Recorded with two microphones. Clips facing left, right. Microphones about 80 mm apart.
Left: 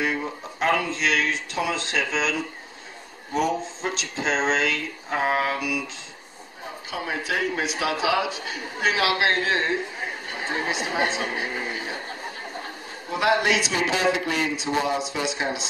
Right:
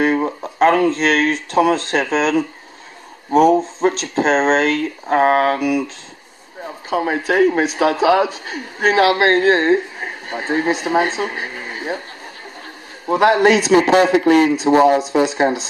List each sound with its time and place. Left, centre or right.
0.0 s speech: right
6.9 s a man's voice: right
13.1 s a man's voice: right